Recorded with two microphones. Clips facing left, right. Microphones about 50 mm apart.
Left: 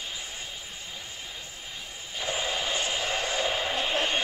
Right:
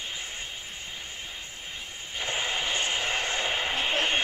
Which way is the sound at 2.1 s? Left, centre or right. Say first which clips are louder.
Even; right.